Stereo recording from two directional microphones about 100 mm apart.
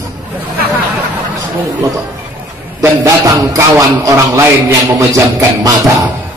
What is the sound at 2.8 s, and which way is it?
A man's voice, 35° right (ahead or behind).